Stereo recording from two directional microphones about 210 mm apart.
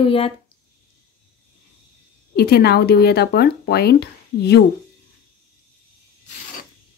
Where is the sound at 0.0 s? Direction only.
25° left (ahead or behind).